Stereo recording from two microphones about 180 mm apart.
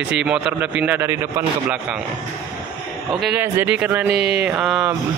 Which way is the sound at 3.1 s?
Centre (ahead or behind).